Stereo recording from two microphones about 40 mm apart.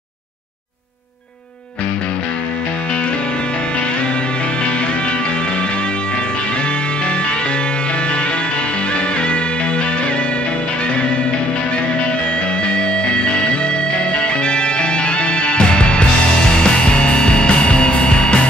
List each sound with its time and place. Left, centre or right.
12.7 s music: left